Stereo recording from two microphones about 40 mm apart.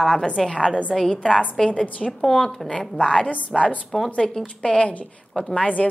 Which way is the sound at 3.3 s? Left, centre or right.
Left.